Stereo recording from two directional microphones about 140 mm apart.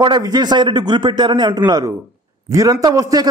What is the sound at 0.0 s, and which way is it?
A man's voice, 30° right (ahead or behind).